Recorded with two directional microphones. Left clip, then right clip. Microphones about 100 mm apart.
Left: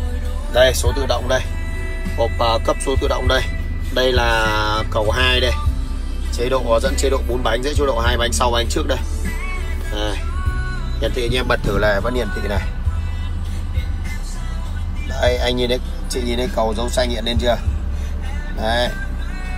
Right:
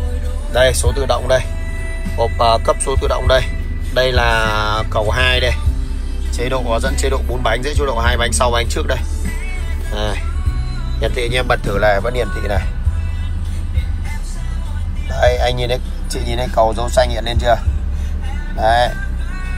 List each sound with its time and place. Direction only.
0.5 s speech: 40° left (ahead or behind)
6.3 s speech: 55° left (ahead or behind); by 9.0 s 40° left (ahead or behind)
9.5 s music: 30° left (ahead or behind)
11.0 s speech: 30° left (ahead or behind)
15.1 s speech: 10° left (ahead or behind)
18.6 s speech: centre (ahead or behind)